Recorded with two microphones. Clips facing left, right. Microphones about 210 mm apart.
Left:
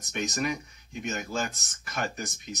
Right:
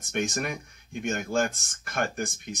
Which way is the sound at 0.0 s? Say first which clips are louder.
Right 1 dB; 55° right (ahead or behind).